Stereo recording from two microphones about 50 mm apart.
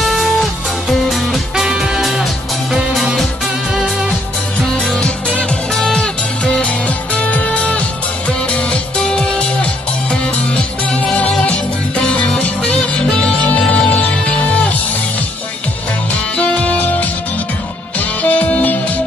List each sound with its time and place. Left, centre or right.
0.0 s music: centre
1.7 s music: centre
4.7 s music: centre
16.3 s music: left
17.9 s music: left